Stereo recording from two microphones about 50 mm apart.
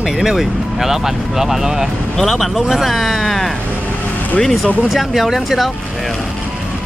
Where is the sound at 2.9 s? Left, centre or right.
Centre.